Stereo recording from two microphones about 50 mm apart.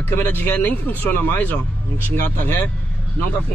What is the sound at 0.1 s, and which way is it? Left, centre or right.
Speech, left.